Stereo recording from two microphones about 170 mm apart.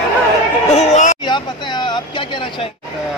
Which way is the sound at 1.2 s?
25° left (ahead or behind).